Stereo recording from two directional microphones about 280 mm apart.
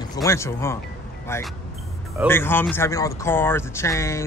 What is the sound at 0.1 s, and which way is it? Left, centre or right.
Speech, centre.